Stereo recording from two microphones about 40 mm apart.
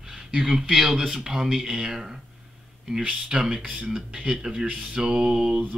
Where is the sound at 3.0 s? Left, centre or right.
Right.